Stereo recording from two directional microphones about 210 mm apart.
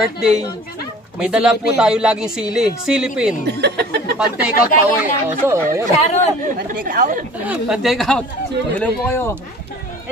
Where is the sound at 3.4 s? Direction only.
50° right (ahead or behind).